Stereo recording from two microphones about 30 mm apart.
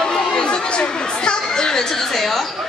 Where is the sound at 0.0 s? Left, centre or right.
Left.